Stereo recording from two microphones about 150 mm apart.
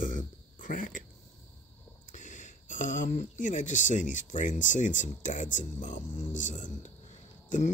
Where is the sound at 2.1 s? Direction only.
55° left (ahead or behind).